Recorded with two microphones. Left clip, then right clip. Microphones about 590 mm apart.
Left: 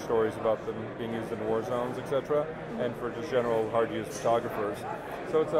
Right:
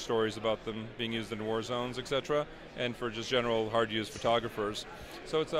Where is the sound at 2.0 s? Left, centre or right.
Right.